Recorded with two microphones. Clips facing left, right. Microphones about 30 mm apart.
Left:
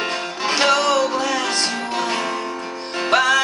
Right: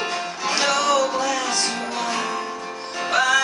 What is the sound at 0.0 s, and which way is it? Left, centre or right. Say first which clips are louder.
Music: left 2 dB; left.